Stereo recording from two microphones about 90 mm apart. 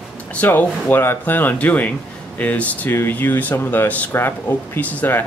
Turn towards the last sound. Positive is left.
turn(degrees=20)  # may be behind; listen again after turning